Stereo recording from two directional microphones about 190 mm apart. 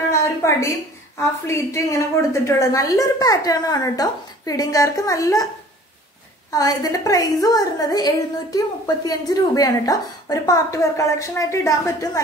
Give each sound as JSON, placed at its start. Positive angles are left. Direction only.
{"t": 0.1, "sound": "a sound", "side_deg": 15}
{"t": 1.5, "sound": "a woman's voice", "side_deg": 15}
{"t": 6.5, "sound": "a woman's voice", "side_deg": 20}